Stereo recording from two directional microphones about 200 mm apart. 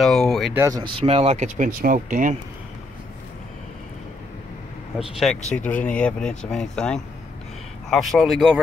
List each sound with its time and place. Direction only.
0.0 s a sound: centre (ahead or behind)
0.6 s speech: 20° right (ahead or behind); by 2.3 s 40° right (ahead or behind)
4.9 s speech: centre (ahead or behind)